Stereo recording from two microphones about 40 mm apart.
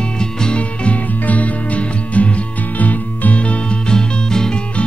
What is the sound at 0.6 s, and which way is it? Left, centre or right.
Music, left.